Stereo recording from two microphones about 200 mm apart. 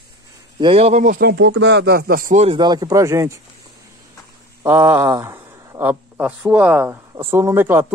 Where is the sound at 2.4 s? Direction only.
25° right (ahead or behind).